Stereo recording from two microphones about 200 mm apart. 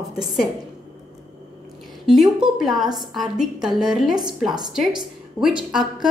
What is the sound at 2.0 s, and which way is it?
Speech, centre (ahead or behind).